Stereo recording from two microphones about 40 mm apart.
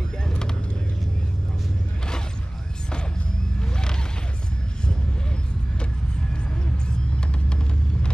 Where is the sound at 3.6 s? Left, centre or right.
Centre.